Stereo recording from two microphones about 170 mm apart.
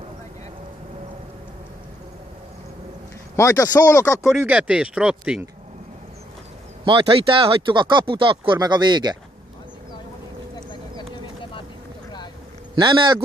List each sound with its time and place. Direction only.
3.3 s speech: 20° left (ahead or behind)
4.2 s speech: 5° right (ahead or behind)
6.8 s speech: 30° right (ahead or behind)
12.7 s speech: 30° right (ahead or behind)